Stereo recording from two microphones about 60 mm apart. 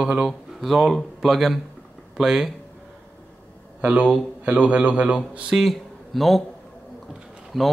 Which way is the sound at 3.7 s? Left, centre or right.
Right.